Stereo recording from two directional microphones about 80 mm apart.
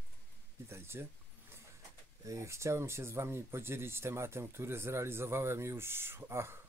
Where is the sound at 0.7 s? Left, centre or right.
Right.